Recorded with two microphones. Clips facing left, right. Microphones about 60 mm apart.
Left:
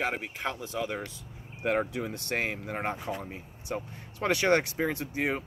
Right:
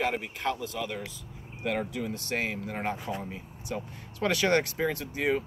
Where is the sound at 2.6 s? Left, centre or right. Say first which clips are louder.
Even; left.